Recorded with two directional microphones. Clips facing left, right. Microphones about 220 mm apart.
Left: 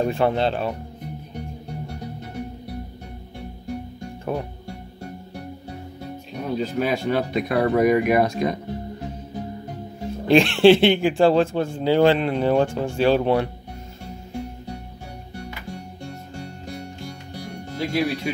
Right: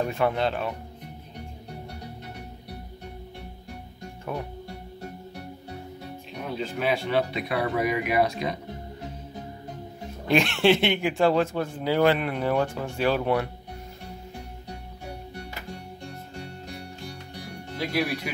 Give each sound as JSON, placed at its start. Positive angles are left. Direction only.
{"t": 0.0, "sound": "speech", "side_deg": 30}
{"t": 6.4, "sound": "speech", "side_deg": 40}
{"t": 10.2, "sound": "speech", "side_deg": 30}
{"t": 17.7, "sound": "speech", "side_deg": 25}